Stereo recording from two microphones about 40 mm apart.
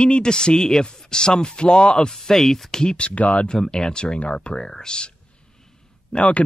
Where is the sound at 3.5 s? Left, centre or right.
Centre.